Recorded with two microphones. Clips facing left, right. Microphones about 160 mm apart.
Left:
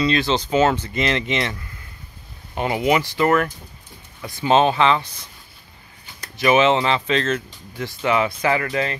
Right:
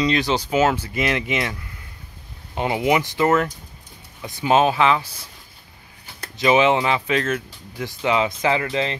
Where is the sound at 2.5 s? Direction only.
20° right (ahead or behind).